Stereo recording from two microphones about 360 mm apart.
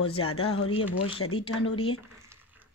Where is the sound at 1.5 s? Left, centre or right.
Left.